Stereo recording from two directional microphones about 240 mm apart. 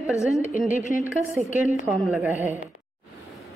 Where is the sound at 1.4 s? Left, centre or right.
Centre.